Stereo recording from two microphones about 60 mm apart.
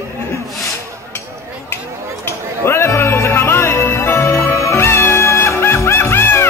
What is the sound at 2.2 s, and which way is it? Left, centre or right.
Music, left.